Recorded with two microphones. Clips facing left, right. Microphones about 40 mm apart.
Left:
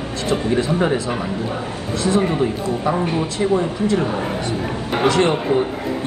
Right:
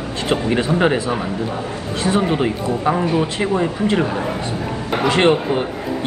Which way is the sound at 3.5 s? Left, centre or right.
Right.